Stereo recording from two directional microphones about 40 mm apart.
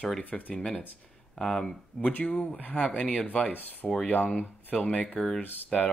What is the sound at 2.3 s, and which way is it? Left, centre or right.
Speech, centre.